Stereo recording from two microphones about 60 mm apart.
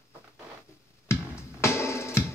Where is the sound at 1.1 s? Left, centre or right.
Left.